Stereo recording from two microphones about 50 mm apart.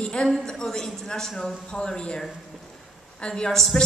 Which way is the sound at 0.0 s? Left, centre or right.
Centre.